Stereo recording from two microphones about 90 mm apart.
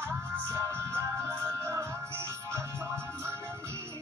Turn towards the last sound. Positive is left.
turn(degrees=-30)  # may be behind; listen again after turning